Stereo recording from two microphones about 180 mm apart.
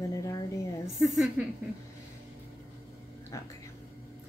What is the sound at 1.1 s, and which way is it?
Speech, centre (ahead or behind).